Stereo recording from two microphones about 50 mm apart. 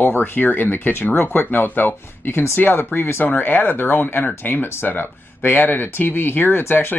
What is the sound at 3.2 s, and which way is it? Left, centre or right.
Speech, left.